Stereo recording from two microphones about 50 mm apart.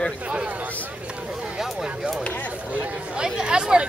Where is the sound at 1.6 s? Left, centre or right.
Centre.